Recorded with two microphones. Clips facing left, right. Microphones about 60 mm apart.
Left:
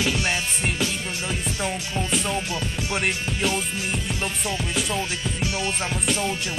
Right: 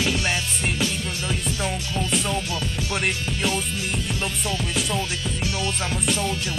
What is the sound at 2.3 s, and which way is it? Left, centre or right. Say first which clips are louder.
Music: even; centre.